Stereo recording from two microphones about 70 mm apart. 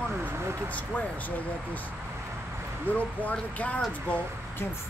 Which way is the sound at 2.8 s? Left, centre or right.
Left.